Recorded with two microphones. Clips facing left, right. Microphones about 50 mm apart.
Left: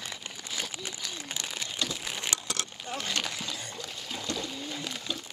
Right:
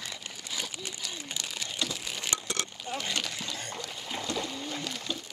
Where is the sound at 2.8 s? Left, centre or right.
Left.